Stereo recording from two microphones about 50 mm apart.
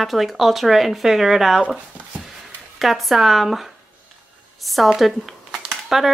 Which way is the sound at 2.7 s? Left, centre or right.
Centre.